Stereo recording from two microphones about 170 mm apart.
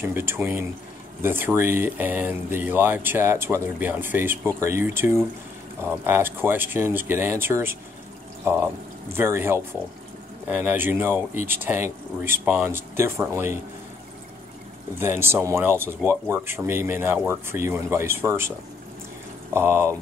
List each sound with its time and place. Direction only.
0.0 s speech: 15° right (ahead or behind)
9.1 s speech: 15° right (ahead or behind)
15.0 s speech: 15° right (ahead or behind)
19.5 s speech: 15° right (ahead or behind)